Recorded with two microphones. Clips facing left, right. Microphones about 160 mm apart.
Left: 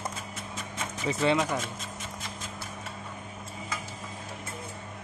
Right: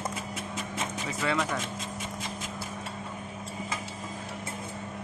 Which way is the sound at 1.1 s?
25° left (ahead or behind).